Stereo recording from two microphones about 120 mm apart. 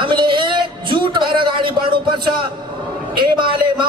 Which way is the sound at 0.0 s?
40° right (ahead or behind).